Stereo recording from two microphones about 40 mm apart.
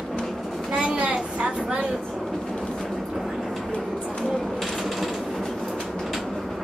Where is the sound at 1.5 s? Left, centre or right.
Right.